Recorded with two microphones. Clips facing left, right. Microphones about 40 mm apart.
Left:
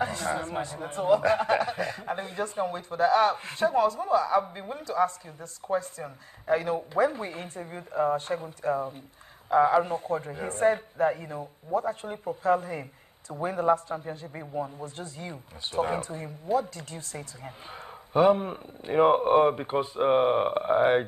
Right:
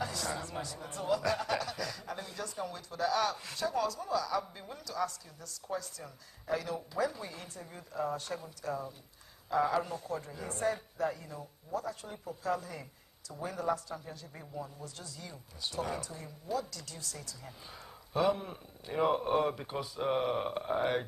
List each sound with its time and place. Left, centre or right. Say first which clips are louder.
0.0 s speech: left 8 dB; left